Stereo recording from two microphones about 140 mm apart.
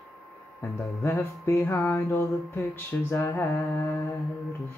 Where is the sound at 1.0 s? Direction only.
20° left (ahead or behind).